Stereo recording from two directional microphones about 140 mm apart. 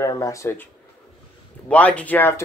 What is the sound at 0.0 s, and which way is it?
Speech, 20° left (ahead or behind).